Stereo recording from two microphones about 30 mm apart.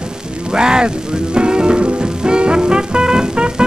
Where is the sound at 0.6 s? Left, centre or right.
Right.